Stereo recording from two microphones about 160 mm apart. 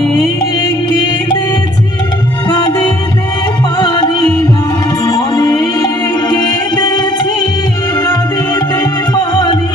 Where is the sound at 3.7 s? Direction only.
25° left (ahead or behind).